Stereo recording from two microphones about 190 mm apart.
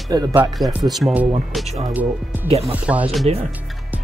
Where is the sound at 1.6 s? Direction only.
35° right (ahead or behind).